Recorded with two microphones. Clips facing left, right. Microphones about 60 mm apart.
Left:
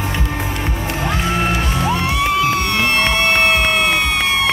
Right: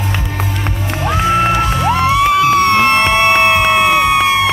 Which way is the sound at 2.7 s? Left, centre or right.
Right.